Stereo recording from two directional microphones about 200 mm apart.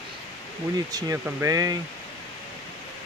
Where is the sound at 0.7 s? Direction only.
15° right (ahead or behind).